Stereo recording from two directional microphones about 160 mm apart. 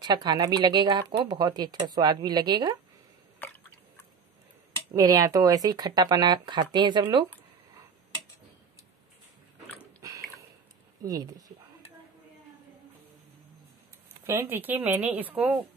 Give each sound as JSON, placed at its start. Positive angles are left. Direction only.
{"t": 0.0, "sound": "speech", "side_deg": -25}
{"t": 4.9, "sound": "speech", "side_deg": -20}
{"t": 10.0, "sound": "a sound", "side_deg": -20}
{"t": 11.0, "sound": "speech", "side_deg": -25}
{"t": 14.2, "sound": "speech", "side_deg": -15}